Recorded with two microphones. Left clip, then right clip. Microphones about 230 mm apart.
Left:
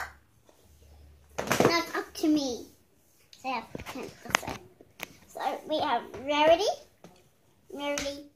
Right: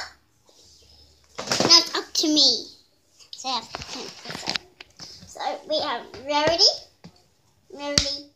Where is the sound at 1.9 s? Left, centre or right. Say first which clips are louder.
Right 5 dB; right.